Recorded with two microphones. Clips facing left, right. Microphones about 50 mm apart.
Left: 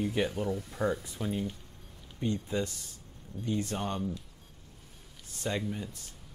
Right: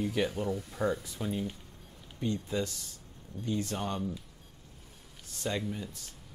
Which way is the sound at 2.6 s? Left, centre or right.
Left.